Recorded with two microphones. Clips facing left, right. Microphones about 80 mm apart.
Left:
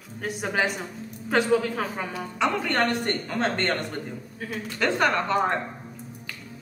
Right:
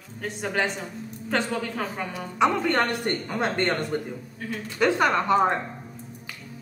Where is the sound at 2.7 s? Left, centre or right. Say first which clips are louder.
Even; centre.